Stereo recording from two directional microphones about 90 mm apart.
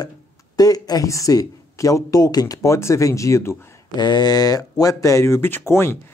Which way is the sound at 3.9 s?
50° left (ahead or behind).